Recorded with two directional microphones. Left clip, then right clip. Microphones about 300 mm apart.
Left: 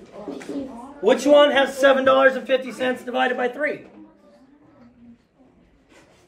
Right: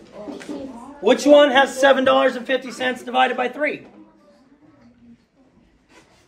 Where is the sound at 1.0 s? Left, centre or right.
Right.